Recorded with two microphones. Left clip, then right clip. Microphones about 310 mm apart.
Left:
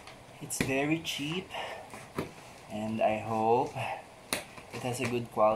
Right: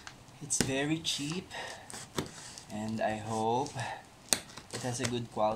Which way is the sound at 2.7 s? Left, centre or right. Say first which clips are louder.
Left 5 dB; right.